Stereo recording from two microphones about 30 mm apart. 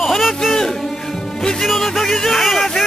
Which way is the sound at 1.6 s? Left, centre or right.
Centre.